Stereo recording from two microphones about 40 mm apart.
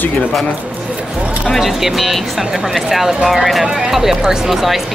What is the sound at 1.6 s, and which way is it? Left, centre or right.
Speech, centre.